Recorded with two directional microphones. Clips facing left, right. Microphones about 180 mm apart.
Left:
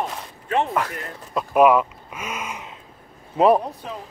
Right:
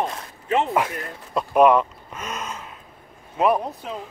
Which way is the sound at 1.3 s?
5° left (ahead or behind).